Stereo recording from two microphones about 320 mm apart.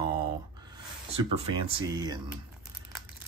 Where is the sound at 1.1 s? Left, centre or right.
Centre.